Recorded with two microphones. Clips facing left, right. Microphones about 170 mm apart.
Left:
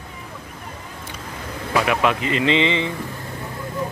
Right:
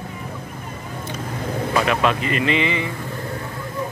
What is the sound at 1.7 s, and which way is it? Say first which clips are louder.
Speech: left 1 dB; 15° left (ahead or behind).